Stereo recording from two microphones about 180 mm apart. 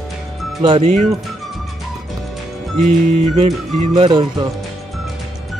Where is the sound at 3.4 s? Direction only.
40° right (ahead or behind).